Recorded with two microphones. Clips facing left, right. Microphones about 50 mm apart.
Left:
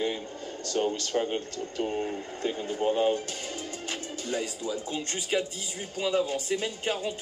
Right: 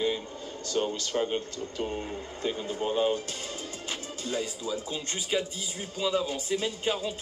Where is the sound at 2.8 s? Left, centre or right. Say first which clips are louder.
Left 2 dB; left.